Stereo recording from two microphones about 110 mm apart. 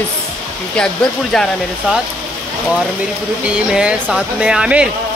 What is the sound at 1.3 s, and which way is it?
Speech, 5° left (ahead or behind).